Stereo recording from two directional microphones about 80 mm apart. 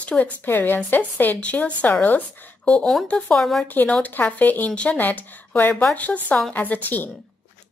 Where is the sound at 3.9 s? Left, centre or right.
Centre.